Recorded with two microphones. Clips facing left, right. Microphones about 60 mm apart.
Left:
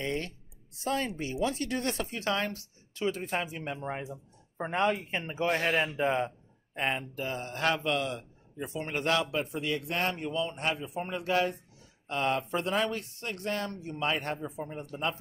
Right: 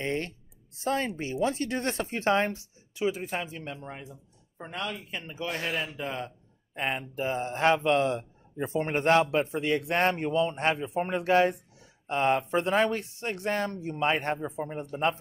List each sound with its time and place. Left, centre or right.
0.0 s a man's voice: right
3.0 s speech: centre
3.4 s speech: centre
3.8 s speech: left
6.7 s speech: centre
7.2 s a man's voice: right